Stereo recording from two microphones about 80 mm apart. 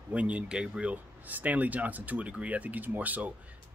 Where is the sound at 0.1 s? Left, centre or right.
Centre.